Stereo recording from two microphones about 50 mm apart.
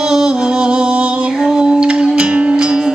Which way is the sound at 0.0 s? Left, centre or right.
Centre.